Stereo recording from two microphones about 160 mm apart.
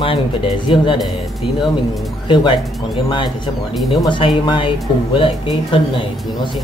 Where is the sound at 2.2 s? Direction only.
30° left (ahead or behind).